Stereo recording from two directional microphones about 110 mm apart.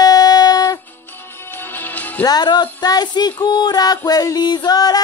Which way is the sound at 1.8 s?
15° left (ahead or behind).